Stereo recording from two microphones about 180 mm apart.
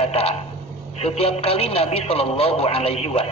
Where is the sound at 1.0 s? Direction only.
35° left (ahead or behind).